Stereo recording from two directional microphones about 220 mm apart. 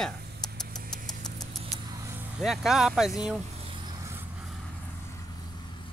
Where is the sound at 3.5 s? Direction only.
25° right (ahead or behind).